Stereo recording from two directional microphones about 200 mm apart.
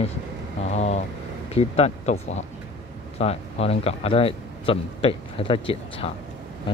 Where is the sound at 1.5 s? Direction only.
30° left (ahead or behind).